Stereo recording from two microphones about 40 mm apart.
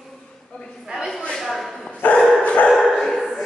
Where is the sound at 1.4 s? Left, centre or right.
Centre.